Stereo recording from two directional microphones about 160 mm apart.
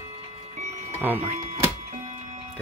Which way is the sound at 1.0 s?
10° right (ahead or behind).